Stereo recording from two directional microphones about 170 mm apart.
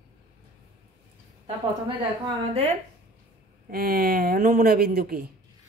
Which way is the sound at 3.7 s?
60° right (ahead or behind).